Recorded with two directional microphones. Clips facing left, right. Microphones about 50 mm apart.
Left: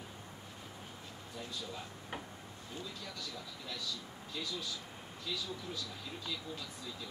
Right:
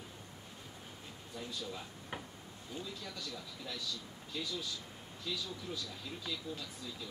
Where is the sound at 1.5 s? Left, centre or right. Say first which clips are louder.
Right 1 dB; centre.